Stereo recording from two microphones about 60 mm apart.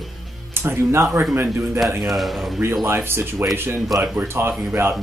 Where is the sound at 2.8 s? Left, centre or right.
Right.